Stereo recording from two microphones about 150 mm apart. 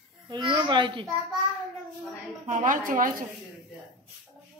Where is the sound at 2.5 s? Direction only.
60° right (ahead or behind).